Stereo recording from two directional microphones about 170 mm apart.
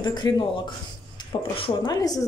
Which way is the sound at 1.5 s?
30° left (ahead or behind).